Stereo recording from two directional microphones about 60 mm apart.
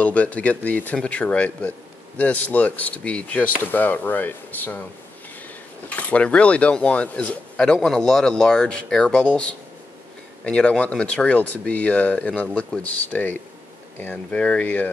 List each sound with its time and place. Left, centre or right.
0.0 s speech: left
5.9 s speech: left